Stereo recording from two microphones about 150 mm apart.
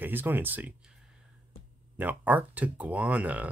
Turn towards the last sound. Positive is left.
turn(degrees=-10)  # may be behind; listen again after turning